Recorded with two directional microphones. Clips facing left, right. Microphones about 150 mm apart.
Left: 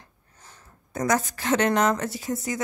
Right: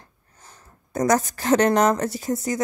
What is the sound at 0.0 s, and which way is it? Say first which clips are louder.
Speech: right 2 dB; 40° right (ahead or behind).